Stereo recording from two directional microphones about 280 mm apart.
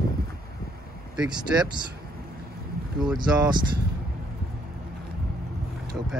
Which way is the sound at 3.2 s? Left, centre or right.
Centre.